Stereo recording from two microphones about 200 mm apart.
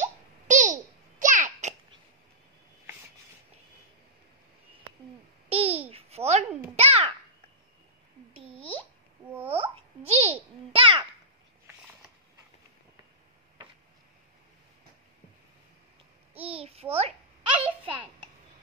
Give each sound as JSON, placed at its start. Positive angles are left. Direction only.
{"t": 0.0, "sound": "babbling", "side_deg": -40}
{"t": 5.5, "sound": "babbling", "side_deg": -30}
{"t": 9.3, "sound": "babbling", "side_deg": -10}
{"t": 10.1, "sound": "babbling", "side_deg": -30}
{"t": 16.6, "sound": "a sound", "side_deg": -30}
{"t": 17.6, "sound": "a sound", "side_deg": -5}